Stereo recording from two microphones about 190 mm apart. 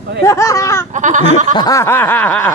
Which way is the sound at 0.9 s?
40° right (ahead or behind).